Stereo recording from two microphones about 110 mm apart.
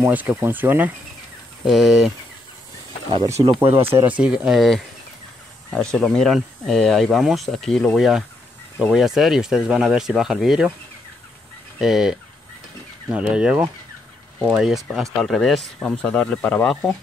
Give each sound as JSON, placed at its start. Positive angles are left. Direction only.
{"t": 0.0, "sound": "speech", "side_deg": -15}
{"t": 1.6, "sound": "speech", "side_deg": 0}
{"t": 3.6, "sound": "speech", "side_deg": -20}
{"t": 11.8, "sound": "speech", "side_deg": -5}